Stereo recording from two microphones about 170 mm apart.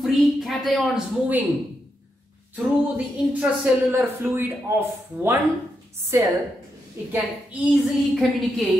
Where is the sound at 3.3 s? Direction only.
10° right (ahead or behind).